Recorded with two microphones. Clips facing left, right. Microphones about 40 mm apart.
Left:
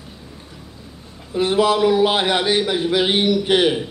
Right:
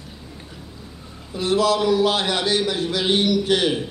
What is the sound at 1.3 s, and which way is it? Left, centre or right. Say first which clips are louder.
A man's voice: left 3 dB; left.